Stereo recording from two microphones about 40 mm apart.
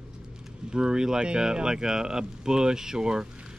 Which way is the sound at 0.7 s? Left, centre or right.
Right.